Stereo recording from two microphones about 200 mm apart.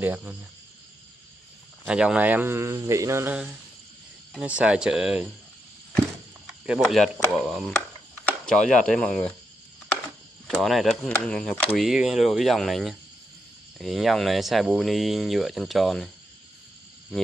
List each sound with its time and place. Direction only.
0.0 s speech: 10° right (ahead or behind)
1.9 s speech: 5° right (ahead or behind)
6.6 s speech: 5° right (ahead or behind)
10.4 s speech: centre (ahead or behind)